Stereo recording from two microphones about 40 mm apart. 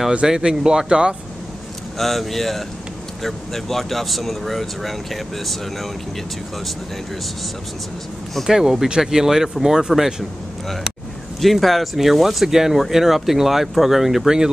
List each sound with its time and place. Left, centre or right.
0.3 s speech: centre
2.0 s speech: centre
8.5 s speech: centre
11.4 s speech: centre